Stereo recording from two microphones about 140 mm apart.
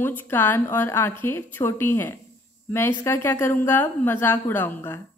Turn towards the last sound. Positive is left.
turn(degrees=15)  # may be behind; listen again after turning